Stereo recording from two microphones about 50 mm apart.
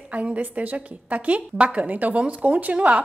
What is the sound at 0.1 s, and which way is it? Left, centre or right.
A woman's voice, right.